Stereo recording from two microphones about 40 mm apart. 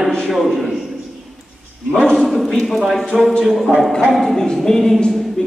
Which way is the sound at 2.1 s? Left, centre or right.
Centre.